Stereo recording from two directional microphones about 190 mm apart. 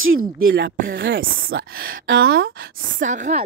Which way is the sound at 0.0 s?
90° right.